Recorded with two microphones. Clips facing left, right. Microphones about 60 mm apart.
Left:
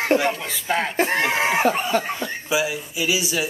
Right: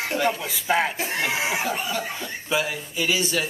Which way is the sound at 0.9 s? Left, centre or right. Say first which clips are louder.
Left 6 dB; left.